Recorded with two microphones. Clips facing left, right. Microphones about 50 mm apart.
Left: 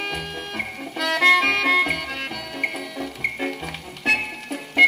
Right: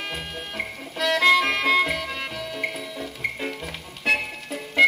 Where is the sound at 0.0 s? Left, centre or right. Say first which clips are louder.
Left 3 dB; left.